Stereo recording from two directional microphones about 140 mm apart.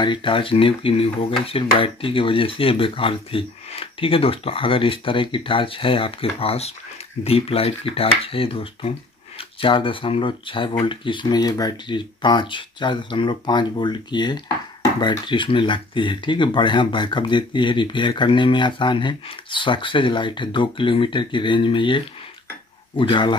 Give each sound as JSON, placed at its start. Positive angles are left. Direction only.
{"t": 0.0, "sound": "speech", "side_deg": 35}